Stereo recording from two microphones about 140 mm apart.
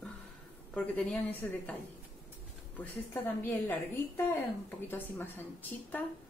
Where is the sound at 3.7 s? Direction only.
15° left (ahead or behind).